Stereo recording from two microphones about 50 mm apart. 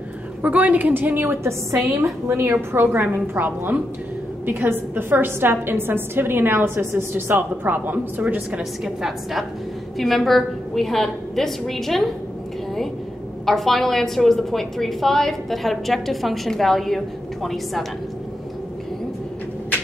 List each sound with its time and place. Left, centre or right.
0.4 s a woman's voice: right
2.0 s a woman's voice: right
2.7 s a woman's voice: right
8.8 s a woman's voice: centre
13.5 s a woman's voice: centre